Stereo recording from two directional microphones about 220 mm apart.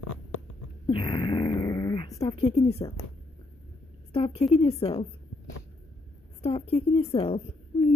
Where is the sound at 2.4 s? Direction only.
25° left (ahead or behind).